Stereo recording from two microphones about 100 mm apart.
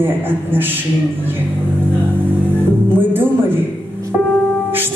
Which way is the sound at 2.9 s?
20° right (ahead or behind).